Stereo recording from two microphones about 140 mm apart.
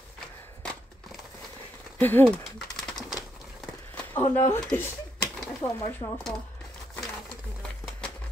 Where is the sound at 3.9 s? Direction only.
20° left (ahead or behind).